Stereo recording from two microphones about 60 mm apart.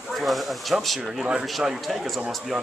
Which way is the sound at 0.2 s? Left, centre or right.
Centre.